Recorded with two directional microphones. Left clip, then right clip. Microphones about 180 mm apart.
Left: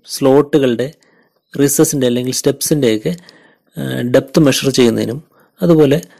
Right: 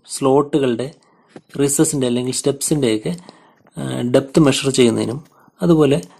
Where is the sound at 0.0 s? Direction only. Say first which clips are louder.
Left 4 dB; 35° left (ahead or behind).